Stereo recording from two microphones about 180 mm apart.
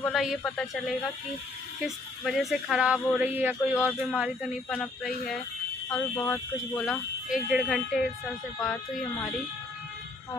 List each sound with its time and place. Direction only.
0.0 s speech: centre (ahead or behind)
6.8 s speech: 5° right (ahead or behind)